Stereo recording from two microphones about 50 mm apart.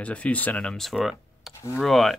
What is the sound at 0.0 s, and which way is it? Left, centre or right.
Speech, left.